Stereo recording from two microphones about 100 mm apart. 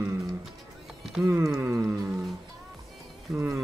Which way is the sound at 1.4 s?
35° right (ahead or behind).